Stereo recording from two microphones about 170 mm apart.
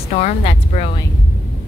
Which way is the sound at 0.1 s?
45° left (ahead or behind).